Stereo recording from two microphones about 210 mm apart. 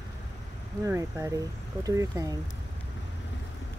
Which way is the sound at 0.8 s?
15° right (ahead or behind).